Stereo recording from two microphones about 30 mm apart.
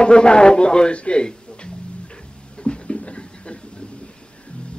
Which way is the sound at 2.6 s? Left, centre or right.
Left.